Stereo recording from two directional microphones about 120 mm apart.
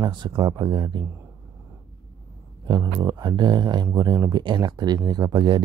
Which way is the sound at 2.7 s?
35° right (ahead or behind).